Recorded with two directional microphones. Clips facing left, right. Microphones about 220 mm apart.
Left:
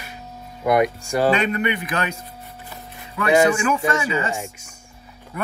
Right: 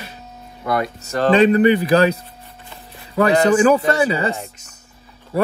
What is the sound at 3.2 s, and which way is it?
A man's voice, 35° right (ahead or behind).